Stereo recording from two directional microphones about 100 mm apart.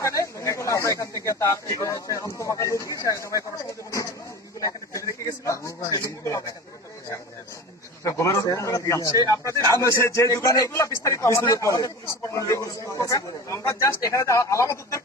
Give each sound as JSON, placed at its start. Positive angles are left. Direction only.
{"t": 0.0, "sound": "a man's voice", "side_deg": 30}
{"t": 4.6, "sound": "a sound", "side_deg": 35}
{"t": 5.4, "sound": "a man's voice", "side_deg": 30}
{"t": 8.0, "sound": "a man's voice", "side_deg": 35}